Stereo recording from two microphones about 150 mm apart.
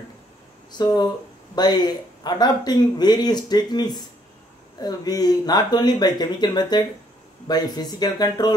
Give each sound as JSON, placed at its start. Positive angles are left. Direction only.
{"t": 0.7, "sound": "speech", "side_deg": 25}